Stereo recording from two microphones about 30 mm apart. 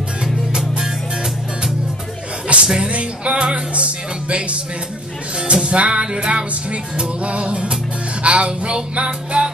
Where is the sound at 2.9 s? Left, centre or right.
Right.